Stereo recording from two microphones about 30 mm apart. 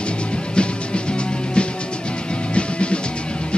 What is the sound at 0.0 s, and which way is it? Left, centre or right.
Music, left.